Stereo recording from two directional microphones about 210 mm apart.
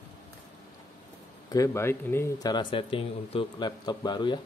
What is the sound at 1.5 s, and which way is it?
Speech, 15° left (ahead or behind).